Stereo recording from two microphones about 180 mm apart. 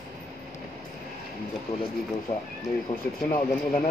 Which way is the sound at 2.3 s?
25° left (ahead or behind).